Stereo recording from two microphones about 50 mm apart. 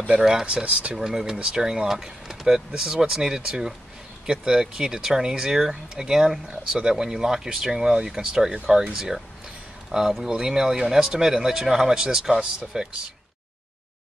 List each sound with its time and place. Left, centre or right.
0.2 s speech: centre
1.3 s speech: centre